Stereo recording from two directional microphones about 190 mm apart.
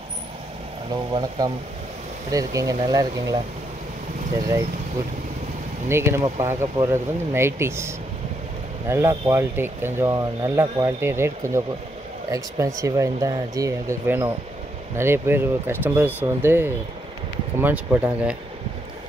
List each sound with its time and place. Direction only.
2.3 s speech: 20° right (ahead or behind)
5.9 s speech: 15° right (ahead or behind)